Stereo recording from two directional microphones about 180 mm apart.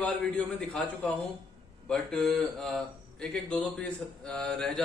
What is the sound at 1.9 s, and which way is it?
A man's voice, centre (ahead or behind).